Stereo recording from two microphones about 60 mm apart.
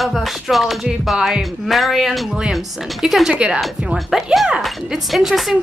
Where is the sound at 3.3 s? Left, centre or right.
Centre.